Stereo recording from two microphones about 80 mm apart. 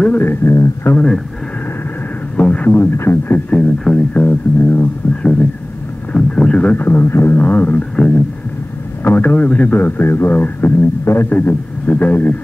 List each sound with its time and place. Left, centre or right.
0.0 s speech: left
2.3 s a sound: centre
2.7 s speech: left
3.8 s speech: centre
5.1 s a sound: centre
6.1 s speech: centre